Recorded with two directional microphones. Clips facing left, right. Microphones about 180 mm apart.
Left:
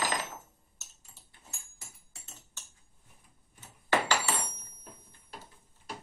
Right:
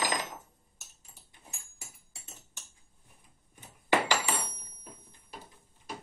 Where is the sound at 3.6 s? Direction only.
15° right (ahead or behind).